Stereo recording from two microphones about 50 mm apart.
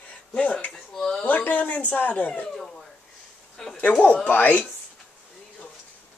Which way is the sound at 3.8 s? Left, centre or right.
Left.